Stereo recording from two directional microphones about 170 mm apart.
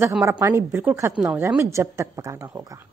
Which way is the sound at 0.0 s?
15° right (ahead or behind).